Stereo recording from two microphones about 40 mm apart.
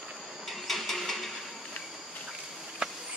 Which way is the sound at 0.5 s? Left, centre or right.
Centre.